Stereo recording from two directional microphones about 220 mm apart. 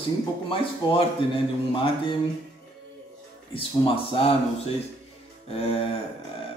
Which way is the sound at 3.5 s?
25° left (ahead or behind).